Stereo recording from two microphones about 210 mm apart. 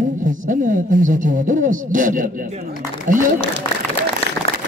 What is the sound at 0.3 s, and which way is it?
Speech, 40° right (ahead or behind).